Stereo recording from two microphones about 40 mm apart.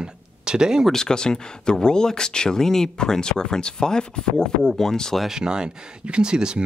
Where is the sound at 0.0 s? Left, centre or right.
Centre.